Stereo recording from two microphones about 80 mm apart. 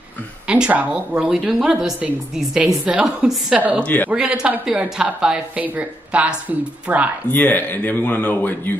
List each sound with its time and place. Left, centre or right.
0.5 s speech: centre
3.5 s speech: centre
3.8 s speech: left
4.1 s speech: centre
5.6 s speech: centre
7.2 s speech: left